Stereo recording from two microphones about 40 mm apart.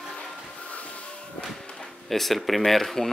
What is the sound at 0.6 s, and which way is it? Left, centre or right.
Music, left.